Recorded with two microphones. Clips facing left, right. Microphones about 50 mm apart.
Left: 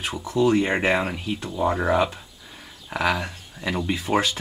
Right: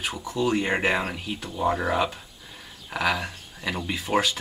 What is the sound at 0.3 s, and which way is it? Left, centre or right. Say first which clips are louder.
Speech: left 5 dB; centre.